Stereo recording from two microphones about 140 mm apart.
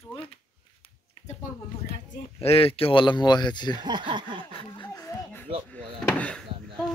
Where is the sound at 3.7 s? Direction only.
30° right (ahead or behind).